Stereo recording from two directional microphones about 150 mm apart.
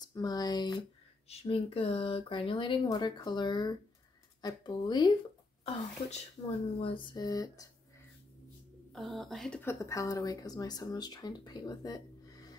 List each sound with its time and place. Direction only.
0.1 s speech: 25° left (ahead or behind)
1.3 s speech: 40° left (ahead or behind); by 7.6 s 25° left (ahead or behind)
8.9 s speech: centre (ahead or behind)
9.6 s speech: 20° left (ahead or behind)